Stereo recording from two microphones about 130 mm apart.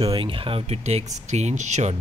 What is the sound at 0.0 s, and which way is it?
Speech, 40° right (ahead or behind).